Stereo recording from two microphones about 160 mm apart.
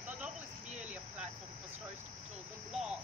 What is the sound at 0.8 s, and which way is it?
Cricket, 10° right (ahead or behind).